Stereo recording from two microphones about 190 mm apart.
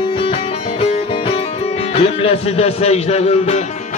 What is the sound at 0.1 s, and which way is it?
Music, 30° left (ahead or behind).